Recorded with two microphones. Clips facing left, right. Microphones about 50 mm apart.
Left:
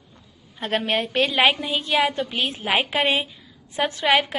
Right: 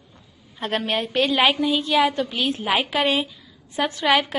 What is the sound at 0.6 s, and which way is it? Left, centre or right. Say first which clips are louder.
A woman's voice: left 1 dB; left.